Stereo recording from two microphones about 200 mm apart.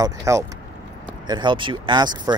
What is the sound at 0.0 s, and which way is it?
Speech, 15° right (ahead or behind).